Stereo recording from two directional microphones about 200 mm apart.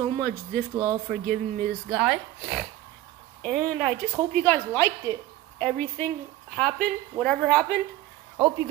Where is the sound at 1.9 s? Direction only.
5° right (ahead or behind).